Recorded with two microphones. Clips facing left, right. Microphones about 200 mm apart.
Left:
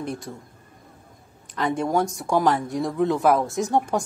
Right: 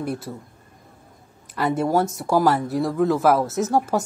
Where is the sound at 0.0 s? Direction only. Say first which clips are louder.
Right 3 dB; 5° right (ahead or behind).